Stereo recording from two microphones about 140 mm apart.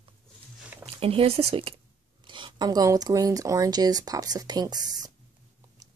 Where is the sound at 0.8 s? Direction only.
45° right (ahead or behind).